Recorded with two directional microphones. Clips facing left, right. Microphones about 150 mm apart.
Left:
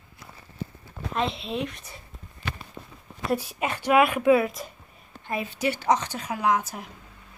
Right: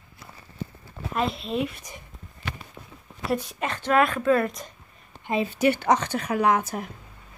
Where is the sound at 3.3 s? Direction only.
5° left (ahead or behind).